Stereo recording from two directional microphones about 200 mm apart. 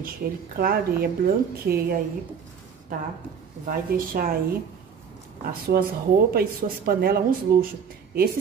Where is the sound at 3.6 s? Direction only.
45° right (ahead or behind).